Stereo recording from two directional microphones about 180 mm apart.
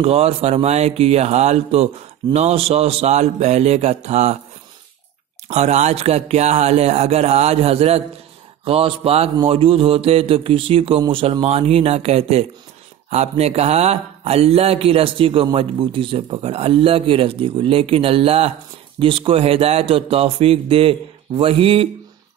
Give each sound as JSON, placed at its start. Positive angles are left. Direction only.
{"t": 0.0, "sound": "mantra", "side_deg": -35}
{"t": 5.5, "sound": "mantra", "side_deg": -40}